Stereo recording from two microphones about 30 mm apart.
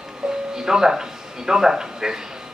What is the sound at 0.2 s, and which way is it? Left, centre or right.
Music, right.